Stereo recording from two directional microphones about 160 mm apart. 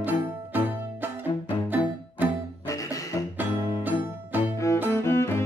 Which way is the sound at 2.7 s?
20° left (ahead or behind).